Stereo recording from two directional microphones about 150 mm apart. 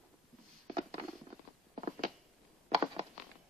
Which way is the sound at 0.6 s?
40° right (ahead or behind).